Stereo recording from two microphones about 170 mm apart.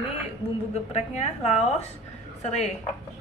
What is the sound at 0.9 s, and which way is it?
A woman's voice, 40° left (ahead or behind).